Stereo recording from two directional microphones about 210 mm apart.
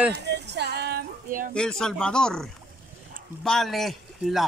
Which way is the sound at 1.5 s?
5° left (ahead or behind).